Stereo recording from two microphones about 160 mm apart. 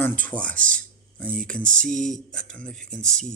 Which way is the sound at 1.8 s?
55° right (ahead or behind).